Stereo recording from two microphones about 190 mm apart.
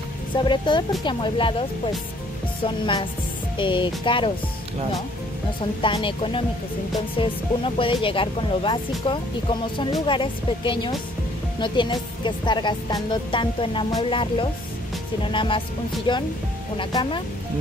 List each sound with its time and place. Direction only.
0.4 s speech: 25° left (ahead or behind)
2.6 s speech: 25° left (ahead or behind)
5.8 s speech: 25° left (ahead or behind)